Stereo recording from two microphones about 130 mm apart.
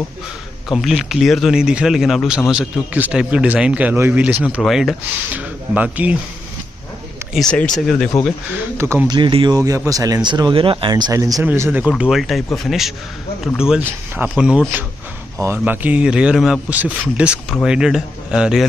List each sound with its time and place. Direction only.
0.7 s speech: centre (ahead or behind)
4.6 s a man's voice: centre (ahead or behind)
5.3 s speech: 10° right (ahead or behind)
7.3 s a man's voice: 5° left (ahead or behind)
8.7 s speech: 20° right (ahead or behind)
9.1 s speech: 40° right (ahead or behind)
9.8 s speech: 25° right (ahead or behind)
11.4 s speech: 15° right (ahead or behind)
12.0 s a man's voice: centre (ahead or behind)